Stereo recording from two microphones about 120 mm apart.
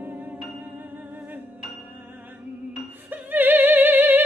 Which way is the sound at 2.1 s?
15° right (ahead or behind).